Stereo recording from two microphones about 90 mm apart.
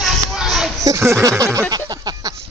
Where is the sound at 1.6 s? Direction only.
50° right (ahead or behind).